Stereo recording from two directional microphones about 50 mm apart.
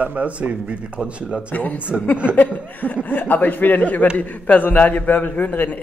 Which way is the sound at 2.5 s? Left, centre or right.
Left.